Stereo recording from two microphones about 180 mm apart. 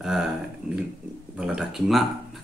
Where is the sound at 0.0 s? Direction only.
Centre (ahead or behind).